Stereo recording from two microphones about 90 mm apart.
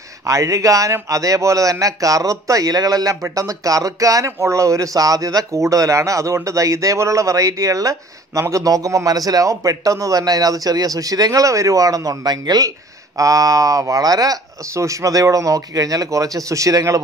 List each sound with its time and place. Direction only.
0.3 s speech: 35° right (ahead or behind)